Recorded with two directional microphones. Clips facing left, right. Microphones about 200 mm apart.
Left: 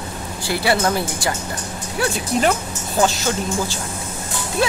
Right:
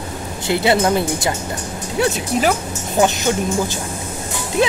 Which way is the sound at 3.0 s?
20° right (ahead or behind).